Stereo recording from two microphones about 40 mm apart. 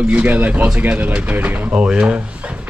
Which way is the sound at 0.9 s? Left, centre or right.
Right.